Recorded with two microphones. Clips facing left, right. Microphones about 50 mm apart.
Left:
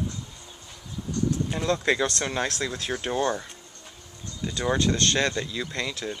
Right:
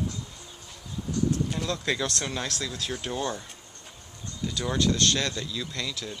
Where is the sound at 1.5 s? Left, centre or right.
Left.